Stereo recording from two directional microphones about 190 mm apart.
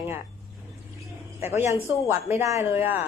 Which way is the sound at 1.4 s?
15° right (ahead or behind).